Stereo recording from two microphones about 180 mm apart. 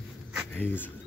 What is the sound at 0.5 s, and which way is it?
Speech, 10° left (ahead or behind).